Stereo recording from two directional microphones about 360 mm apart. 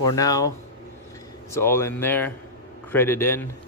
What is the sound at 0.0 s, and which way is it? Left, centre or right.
Speech, centre.